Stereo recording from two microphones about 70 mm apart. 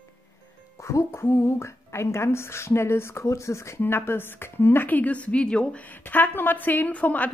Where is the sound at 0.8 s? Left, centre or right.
Left.